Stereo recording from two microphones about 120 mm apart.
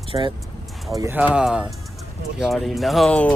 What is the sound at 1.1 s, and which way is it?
Speech, 10° right (ahead or behind).